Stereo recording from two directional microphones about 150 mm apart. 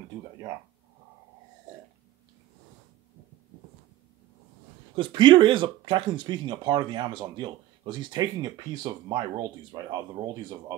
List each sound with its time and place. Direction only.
4.9 s speech: 30° right (ahead or behind)